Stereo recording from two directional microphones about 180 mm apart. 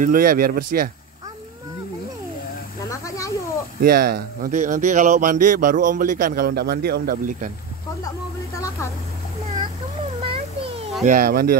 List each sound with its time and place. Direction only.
0.0 s speech: 50° right (ahead or behind)
2.9 s snake: 20° left (ahead or behind)
3.8 s speech: 60° right (ahead or behind)
8.5 s a sound: 15° left (ahead or behind)
10.2 s a sound: 30° right (ahead or behind)
11.1 s speech: 55° right (ahead or behind)